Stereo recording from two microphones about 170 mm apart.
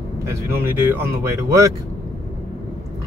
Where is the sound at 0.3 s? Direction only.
15° right (ahead or behind).